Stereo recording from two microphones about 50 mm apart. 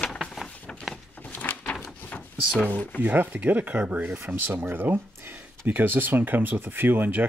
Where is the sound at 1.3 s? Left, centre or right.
Left.